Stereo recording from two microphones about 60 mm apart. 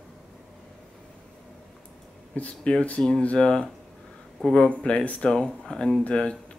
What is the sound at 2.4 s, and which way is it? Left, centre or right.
Speech, left.